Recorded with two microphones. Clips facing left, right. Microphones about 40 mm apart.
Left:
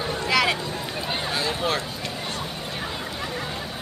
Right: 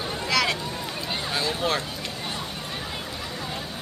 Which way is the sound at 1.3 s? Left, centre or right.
Centre.